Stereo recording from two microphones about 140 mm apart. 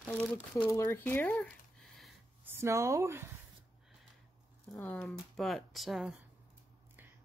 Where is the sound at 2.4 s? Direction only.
20° right (ahead or behind).